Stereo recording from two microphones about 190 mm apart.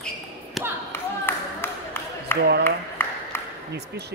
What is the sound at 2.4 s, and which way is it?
Speech, 60° right (ahead or behind).